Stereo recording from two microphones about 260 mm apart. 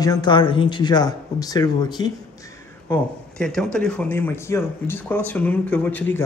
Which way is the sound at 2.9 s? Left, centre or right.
Centre.